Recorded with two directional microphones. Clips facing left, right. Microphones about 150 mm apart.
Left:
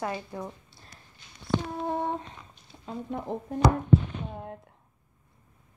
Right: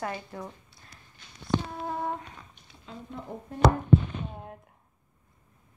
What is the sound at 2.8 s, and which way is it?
Speech, 65° left (ahead or behind).